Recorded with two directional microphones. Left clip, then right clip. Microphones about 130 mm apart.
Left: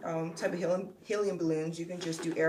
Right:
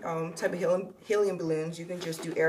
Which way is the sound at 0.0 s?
35° right (ahead or behind).